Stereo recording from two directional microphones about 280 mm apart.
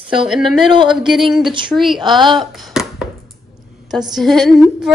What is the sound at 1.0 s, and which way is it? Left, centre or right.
A woman's voice, centre.